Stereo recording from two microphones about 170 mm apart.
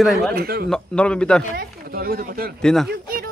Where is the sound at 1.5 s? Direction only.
60° right (ahead or behind).